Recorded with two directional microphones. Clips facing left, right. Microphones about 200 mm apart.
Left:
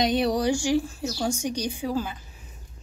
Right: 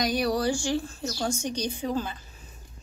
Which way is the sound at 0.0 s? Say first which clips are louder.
Left 3 dB; 25° left (ahead or behind).